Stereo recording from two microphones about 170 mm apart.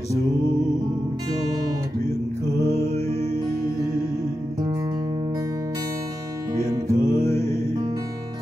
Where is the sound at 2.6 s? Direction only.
40° left (ahead or behind).